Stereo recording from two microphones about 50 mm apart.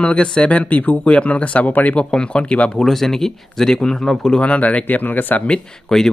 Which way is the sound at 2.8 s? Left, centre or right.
Centre.